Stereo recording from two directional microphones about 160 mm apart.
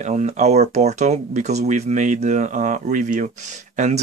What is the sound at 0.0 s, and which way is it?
Speech, 45° right (ahead or behind).